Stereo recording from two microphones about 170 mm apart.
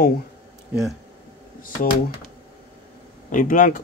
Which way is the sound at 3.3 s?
50° left (ahead or behind).